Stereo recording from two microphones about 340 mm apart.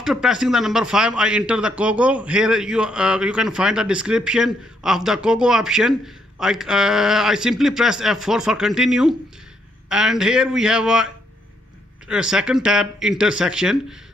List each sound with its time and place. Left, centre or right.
0.0 s a man's voice: centre
12.1 s a man's voice: centre